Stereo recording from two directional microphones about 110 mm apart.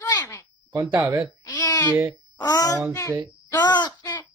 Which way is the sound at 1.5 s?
40° left (ahead or behind).